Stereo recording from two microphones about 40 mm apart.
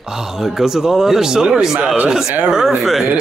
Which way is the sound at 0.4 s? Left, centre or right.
Centre.